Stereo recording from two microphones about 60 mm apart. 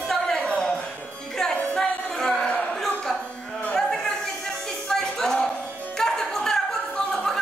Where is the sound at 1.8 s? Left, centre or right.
Centre.